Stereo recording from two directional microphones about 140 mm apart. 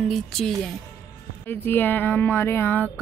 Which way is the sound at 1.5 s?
15° left (ahead or behind).